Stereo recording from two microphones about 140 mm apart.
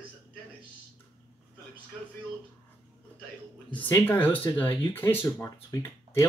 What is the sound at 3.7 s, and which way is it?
Speech, 15° left (ahead or behind).